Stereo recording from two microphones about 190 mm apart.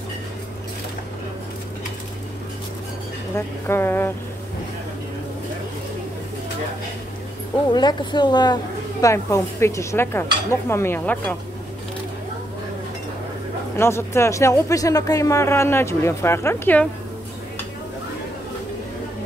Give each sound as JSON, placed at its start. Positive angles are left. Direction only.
{"t": 3.3, "sound": "speech", "side_deg": 15}
{"t": 7.7, "sound": "a woman's voice", "side_deg": 25}
{"t": 13.7, "sound": "speech", "side_deg": 15}